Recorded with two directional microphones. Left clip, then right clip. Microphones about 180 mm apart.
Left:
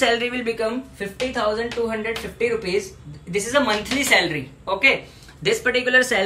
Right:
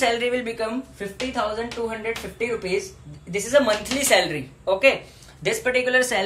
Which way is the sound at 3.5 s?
30° right (ahead or behind).